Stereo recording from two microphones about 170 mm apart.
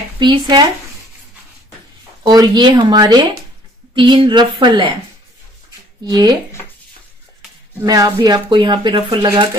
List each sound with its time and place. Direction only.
0.2 s speech: 25° right (ahead or behind)
2.2 s speech: 25° right (ahead or behind)
6.0 s speech: 25° right (ahead or behind)
7.8 s speech: 20° right (ahead or behind)